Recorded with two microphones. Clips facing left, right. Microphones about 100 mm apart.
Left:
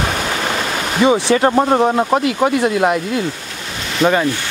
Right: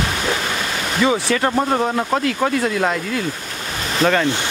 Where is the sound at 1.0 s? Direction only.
20° left (ahead or behind).